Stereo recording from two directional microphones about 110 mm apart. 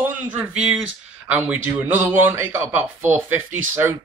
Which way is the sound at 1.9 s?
20° right (ahead or behind).